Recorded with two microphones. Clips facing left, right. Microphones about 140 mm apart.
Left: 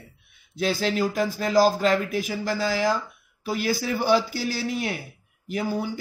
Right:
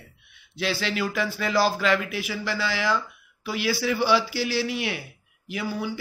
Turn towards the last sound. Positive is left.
turn(degrees=45)  # may be behind; listen again after turning